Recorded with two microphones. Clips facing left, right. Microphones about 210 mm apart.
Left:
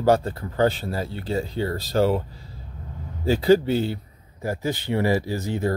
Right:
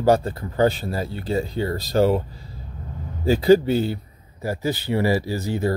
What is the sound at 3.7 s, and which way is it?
Speech, 40° right (ahead or behind).